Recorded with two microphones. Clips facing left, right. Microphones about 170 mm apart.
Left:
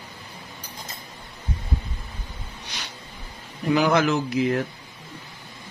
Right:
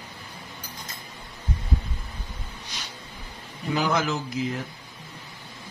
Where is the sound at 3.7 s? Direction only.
70° left (ahead or behind).